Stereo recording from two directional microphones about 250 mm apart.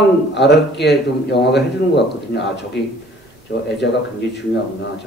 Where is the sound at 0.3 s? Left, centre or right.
Left.